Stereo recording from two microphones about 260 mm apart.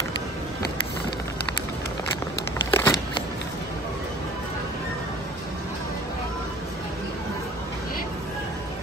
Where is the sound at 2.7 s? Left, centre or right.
Centre.